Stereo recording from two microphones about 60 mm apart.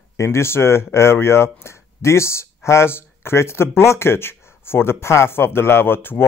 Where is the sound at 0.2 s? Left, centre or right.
Left.